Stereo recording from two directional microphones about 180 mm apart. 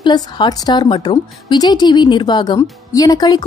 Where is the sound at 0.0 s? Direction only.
25° left (ahead or behind).